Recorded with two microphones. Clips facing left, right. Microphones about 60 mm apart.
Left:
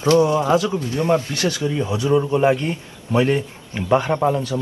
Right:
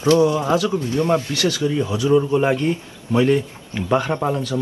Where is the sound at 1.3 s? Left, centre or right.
Left.